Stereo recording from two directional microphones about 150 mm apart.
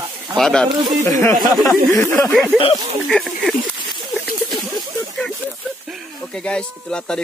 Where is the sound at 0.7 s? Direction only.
30° right (ahead or behind).